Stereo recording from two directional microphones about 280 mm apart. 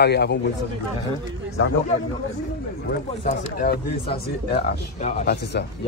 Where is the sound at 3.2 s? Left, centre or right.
Left.